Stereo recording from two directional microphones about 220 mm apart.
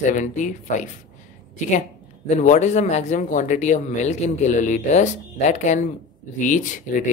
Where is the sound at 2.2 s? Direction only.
35° left (ahead or behind).